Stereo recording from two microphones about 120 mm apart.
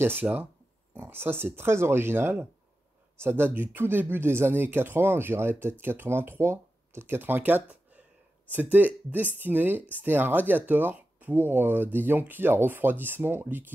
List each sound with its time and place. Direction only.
0.0 s speech: 15° right (ahead or behind)